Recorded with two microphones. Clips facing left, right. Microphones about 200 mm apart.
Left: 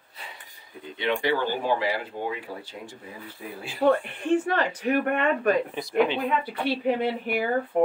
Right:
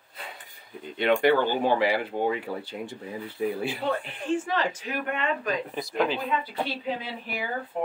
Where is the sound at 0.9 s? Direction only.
55° right (ahead or behind).